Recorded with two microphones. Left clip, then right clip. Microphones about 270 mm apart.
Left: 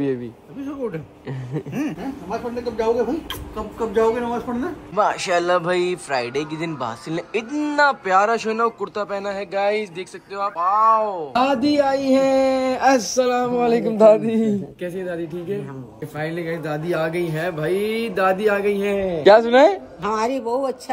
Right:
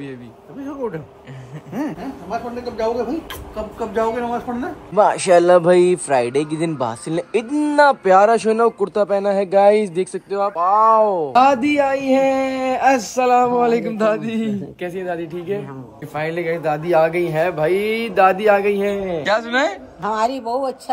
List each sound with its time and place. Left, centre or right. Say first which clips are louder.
1.7 s speech: right 3 dB; centre
11.6 s speech: right 1 dB; centre
13.5 s speech: right 2 dB; centre
19.4 s a woman's voice: left 5 dB; right
20.1 s a man's voice: right 2 dB; centre